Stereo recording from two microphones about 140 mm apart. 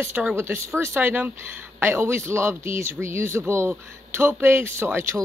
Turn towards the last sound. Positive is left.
turn(degrees=-15)  # may be behind; listen again after turning